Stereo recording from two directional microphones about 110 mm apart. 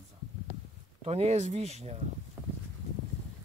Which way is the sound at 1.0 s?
75° right (ahead or behind).